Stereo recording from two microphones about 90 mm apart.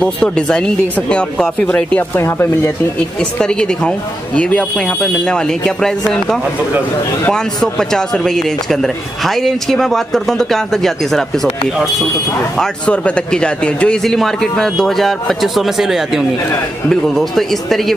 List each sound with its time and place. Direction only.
0.0 s speech: 10° left (ahead or behind)
2.1 s speech: 30° left (ahead or behind)
3.2 s speech: 10° left (ahead or behind)
12.5 s speech: 15° left (ahead or behind)